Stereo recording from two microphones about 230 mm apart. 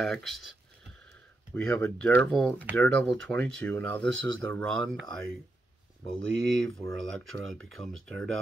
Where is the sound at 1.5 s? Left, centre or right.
Centre.